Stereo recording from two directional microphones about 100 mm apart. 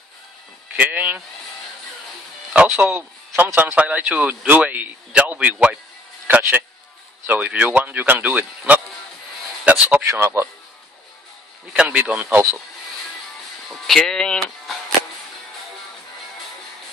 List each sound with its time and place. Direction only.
0.7 s speech: 15° right (ahead or behind)
2.5 s a man's voice: 10° right (ahead or behind)
10.0 s speech: 30° right (ahead or behind)
11.7 s speech: 10° right (ahead or behind)
13.7 s speech: 5° left (ahead or behind)